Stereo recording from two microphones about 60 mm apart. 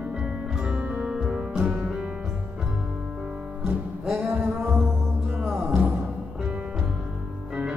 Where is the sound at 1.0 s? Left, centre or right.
Centre.